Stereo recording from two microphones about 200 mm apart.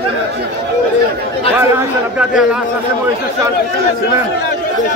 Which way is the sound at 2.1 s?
5° right (ahead or behind).